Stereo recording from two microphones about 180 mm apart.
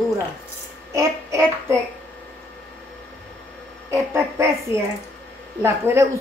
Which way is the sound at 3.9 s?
15° right (ahead or behind).